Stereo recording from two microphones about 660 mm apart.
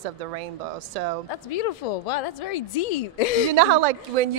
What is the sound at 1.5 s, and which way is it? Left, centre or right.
Speech, left.